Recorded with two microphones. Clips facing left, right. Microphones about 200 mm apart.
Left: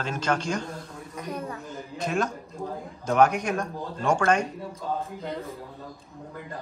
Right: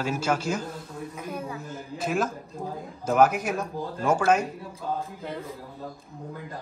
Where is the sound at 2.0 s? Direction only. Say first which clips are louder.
Even; 5° right (ahead or behind).